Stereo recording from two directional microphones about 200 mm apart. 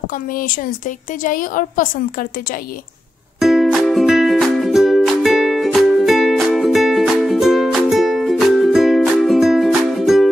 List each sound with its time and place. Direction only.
0.3 s a woman's voice: 45° left (ahead or behind)
3.3 s music: centre (ahead or behind)